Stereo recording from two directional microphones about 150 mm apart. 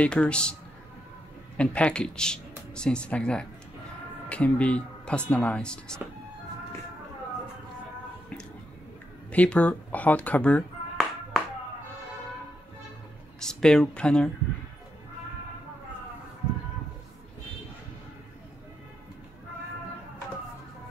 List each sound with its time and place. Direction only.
0.0 s speech: 5° left (ahead or behind)
1.6 s speech: 10° left (ahead or behind)
9.3 s a sound: 10° left (ahead or behind)
13.4 s speech: 5° left (ahead or behind)